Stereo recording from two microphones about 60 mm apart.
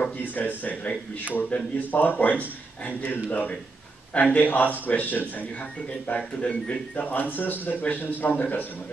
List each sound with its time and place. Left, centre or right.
0.2 s speech: left